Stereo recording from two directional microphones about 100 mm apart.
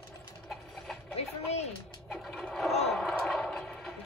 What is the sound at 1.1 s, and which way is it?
Speech, 90° left.